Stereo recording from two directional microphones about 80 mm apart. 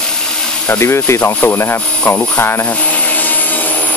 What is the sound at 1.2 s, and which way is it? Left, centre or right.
Speech, left.